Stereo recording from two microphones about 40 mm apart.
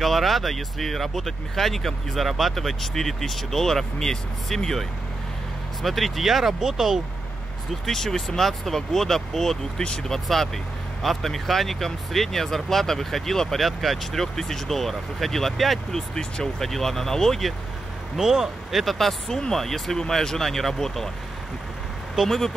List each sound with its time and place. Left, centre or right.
0.0 s speech: centre
7.8 s speech: centre
16.2 s speech: centre
18.1 s speech: centre
22.2 s speech: centre